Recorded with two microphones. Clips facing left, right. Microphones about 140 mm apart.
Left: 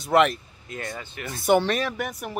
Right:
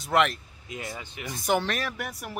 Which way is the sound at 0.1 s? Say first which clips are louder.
Left 4 dB; centre (ahead or behind).